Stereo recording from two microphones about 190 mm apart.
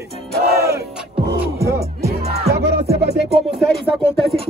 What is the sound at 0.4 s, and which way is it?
Music, 55° right (ahead or behind).